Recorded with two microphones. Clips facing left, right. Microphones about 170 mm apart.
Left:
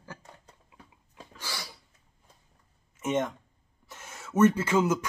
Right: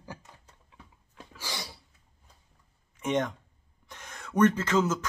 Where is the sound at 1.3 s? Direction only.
20° right (ahead or behind).